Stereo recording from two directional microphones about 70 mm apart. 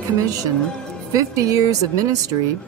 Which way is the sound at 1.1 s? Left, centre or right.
Right.